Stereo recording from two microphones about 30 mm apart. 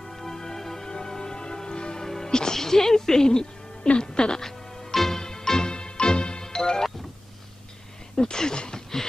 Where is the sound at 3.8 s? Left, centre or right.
Left.